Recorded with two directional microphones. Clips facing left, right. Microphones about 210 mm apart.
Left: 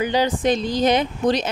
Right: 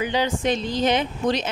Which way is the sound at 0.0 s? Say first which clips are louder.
Left 3 dB; 40° left (ahead or behind).